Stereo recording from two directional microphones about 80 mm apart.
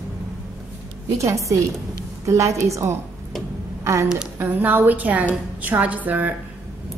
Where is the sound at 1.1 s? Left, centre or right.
Right.